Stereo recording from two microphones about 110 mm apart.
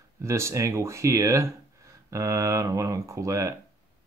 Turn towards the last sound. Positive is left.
turn(degrees=-30)  # may be behind; listen again after turning